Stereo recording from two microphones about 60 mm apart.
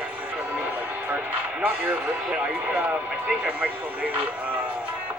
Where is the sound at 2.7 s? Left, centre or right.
Right.